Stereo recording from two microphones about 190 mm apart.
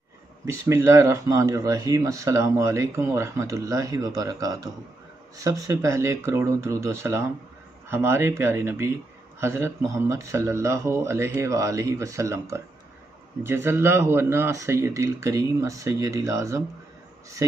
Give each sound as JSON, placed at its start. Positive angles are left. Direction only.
{"t": 0.5, "sound": "speech", "side_deg": -15}